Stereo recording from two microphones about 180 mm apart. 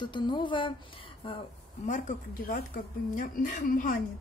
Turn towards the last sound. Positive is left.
turn(degrees=50)  # may be behind; listen again after turning